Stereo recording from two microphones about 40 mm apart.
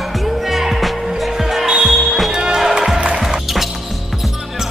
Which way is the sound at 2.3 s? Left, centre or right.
Centre.